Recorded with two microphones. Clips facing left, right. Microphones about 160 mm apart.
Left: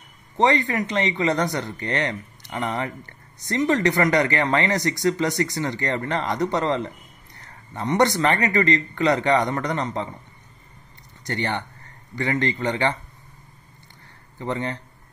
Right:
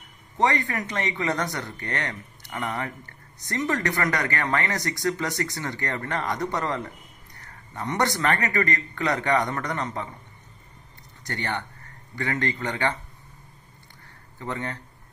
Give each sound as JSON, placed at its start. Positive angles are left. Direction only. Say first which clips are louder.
{"t": 0.4, "sound": "speech", "louder": "left 4 dB", "side_deg": 20}
{"t": 11.2, "sound": "speech", "louder": "left 4 dB", "side_deg": 20}
{"t": 14.4, "sound": "speech", "louder": "left 5 dB", "side_deg": 20}